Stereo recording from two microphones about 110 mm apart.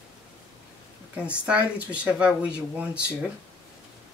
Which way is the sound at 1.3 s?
10° right (ahead or behind).